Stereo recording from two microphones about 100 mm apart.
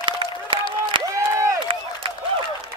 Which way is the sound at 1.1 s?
30° right (ahead or behind).